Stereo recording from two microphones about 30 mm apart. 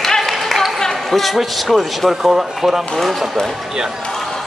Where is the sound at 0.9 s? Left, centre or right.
Centre.